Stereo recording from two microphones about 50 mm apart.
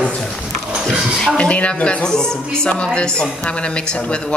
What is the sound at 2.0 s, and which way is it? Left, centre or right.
A woman's voice, centre.